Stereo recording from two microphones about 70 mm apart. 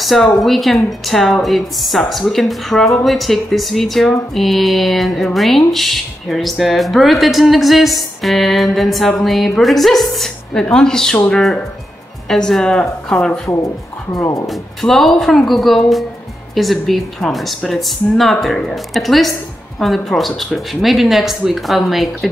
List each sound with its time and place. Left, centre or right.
0.0 s speech: centre
14.4 s speech: centre